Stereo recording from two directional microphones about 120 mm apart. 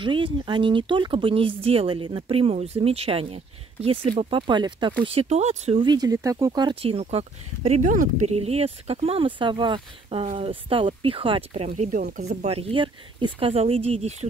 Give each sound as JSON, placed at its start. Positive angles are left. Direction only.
{"t": 0.0, "sound": "speech", "side_deg": -45}
{"t": 5.0, "sound": "speech", "side_deg": -60}
{"t": 5.8, "sound": "speech", "side_deg": -35}
{"t": 6.7, "sound": "speech", "side_deg": -55}
{"t": 7.8, "sound": "speech", "side_deg": -90}
{"t": 10.2, "sound": "speech", "side_deg": -55}